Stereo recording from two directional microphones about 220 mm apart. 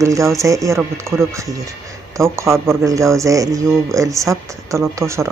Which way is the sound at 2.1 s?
10° right (ahead or behind).